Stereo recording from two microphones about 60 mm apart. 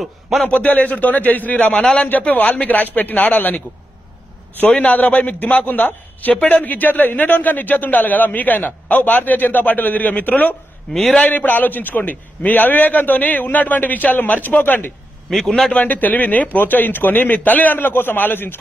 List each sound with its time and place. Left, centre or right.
0.4 s a man's voice: left
10.9 s a man's voice: centre
11.2 s a man's voice: left
15.2 s a man's voice: centre
15.7 s speech: left